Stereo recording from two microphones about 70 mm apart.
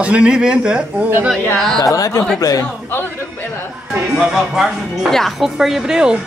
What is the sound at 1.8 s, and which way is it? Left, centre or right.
Speech, left.